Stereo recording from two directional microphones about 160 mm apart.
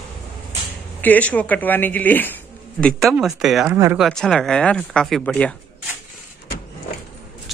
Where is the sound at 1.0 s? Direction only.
10° left (ahead or behind).